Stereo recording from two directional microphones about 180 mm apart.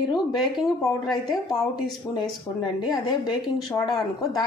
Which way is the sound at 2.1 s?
15° left (ahead or behind).